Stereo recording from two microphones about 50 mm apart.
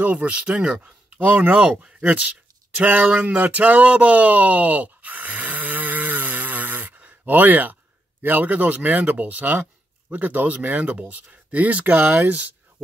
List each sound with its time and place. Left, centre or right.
0.0 s speech: right
0.6 s speech: centre
0.8 s speech: right
2.7 s speech: right
3.2 s a sound: right
8.2 s speech: right